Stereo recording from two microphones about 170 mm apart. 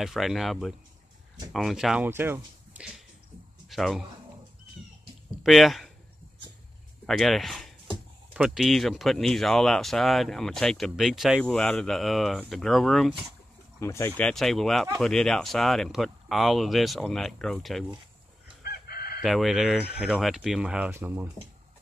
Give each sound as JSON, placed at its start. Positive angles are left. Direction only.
{"t": 0.0, "sound": "speech", "side_deg": 0}
{"t": 2.0, "sound": "speech", "side_deg": -15}
{"t": 3.6, "sound": "a sound", "side_deg": 0}
{"t": 5.4, "sound": "speech", "side_deg": 0}
{"t": 7.1, "sound": "speech", "side_deg": 0}
{"t": 13.7, "sound": "speech", "side_deg": 15}
{"t": 18.6, "sound": "chicken", "side_deg": 65}
{"t": 19.2, "sound": "speech", "side_deg": 0}